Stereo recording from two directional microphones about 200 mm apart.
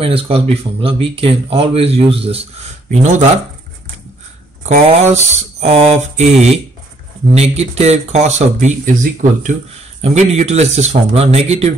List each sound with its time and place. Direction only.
0.0 s speech: 30° right (ahead or behind)
4.6 s speech: 35° right (ahead or behind)